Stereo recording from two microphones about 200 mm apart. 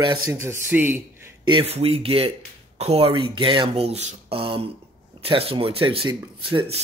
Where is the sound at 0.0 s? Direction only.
20° right (ahead or behind).